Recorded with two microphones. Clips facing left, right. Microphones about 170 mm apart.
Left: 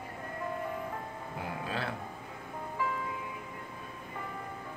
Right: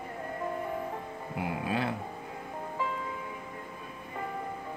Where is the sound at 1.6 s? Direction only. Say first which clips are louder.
Right 5 dB; 15° right (ahead or behind).